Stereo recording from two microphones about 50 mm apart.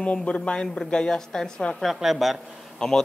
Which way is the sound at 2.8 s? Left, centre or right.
Centre.